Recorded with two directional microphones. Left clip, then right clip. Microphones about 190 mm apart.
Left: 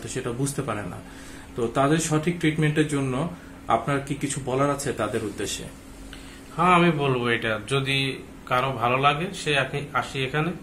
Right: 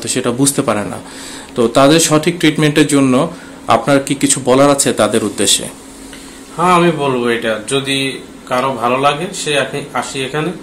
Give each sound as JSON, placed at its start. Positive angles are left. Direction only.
{"t": 0.0, "sound": "speech", "side_deg": -55}
{"t": 6.5, "sound": "a man's voice", "side_deg": 0}